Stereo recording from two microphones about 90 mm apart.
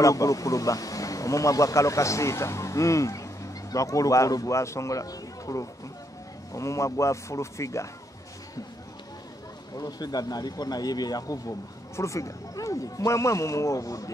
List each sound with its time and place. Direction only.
0.0 s speech: 40° left (ahead or behind)
9.8 s speech: 45° left (ahead or behind)